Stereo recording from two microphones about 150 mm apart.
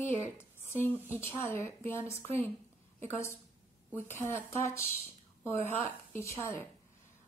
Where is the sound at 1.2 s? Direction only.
15° left (ahead or behind).